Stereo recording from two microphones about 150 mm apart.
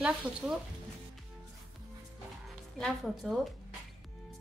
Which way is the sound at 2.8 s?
Centre (ahead or behind).